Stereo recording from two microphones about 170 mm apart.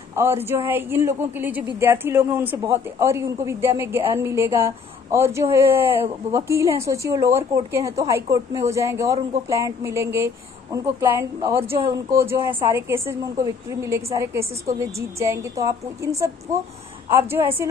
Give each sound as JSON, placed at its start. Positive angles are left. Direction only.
{"t": 0.1, "sound": "speech", "side_deg": -15}